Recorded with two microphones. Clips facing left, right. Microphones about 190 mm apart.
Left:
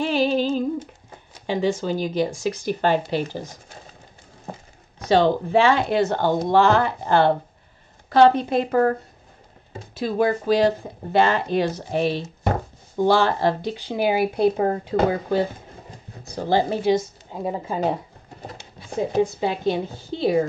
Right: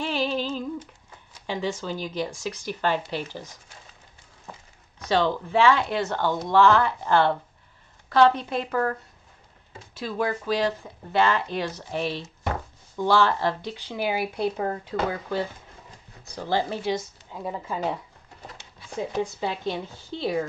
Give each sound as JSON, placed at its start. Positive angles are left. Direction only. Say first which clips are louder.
{"t": 0.0, "sound": "humming", "louder": "left 6 dB", "side_deg": 50}
{"t": 1.1, "sound": "speech", "louder": "left 6 dB", "side_deg": 50}
{"t": 4.5, "sound": "a sound", "louder": "left 8 dB", "side_deg": 45}
{"t": 5.6, "sound": "speech", "louder": "left 2 dB", "side_deg": 50}
{"t": 8.5, "sound": "speech", "louder": "left 7 dB", "side_deg": 35}
{"t": 10.0, "sound": "speech", "louder": "left 6 dB", "side_deg": 45}
{"t": 12.1, "sound": "a sound", "louder": "left 6 dB", "side_deg": 45}
{"t": 13.2, "sound": "speech", "louder": "left 3 dB", "side_deg": 45}
{"t": 17.4, "sound": "speech", "louder": "left 5 dB", "side_deg": 30}